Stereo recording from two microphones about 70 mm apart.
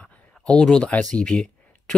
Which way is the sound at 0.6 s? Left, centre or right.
Centre.